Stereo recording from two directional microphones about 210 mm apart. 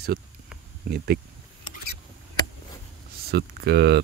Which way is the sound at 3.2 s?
50° right (ahead or behind).